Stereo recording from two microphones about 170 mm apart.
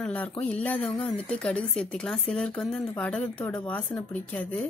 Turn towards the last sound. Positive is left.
turn(degrees=10)  # may be behind; listen again after turning